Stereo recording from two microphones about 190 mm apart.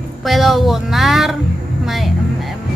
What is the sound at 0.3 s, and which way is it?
Speech, centre (ahead or behind).